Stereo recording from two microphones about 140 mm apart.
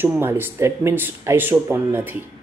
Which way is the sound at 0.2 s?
15° right (ahead or behind).